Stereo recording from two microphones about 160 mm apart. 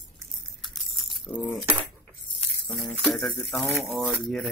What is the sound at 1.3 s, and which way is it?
Speech, 10° left (ahead or behind).